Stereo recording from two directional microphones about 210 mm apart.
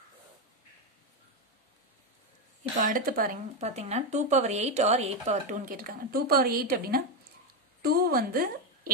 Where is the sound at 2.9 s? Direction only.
40° right (ahead or behind).